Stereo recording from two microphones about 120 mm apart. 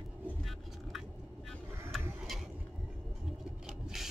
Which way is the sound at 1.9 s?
Centre (ahead or behind).